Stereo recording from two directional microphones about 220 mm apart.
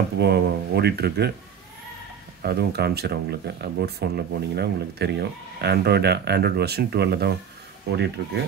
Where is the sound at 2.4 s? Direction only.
45° right (ahead or behind).